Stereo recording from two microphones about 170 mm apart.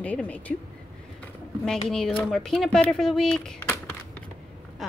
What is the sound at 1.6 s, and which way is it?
Speech, 5° left (ahead or behind).